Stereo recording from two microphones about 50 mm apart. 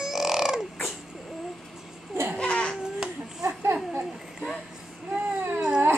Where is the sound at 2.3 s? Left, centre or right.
Left.